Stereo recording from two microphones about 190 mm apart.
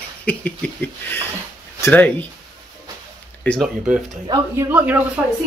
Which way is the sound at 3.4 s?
Centre (ahead or behind).